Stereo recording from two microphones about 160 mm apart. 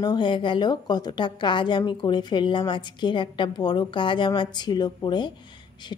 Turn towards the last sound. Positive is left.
turn(degrees=30)  # may be behind; listen again after turning